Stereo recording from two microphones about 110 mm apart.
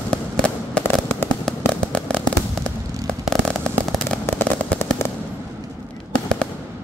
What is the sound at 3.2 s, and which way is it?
Fireworks, 5° left (ahead or behind).